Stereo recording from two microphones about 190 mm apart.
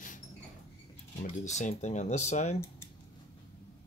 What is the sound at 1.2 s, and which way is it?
Speech, 40° left (ahead or behind).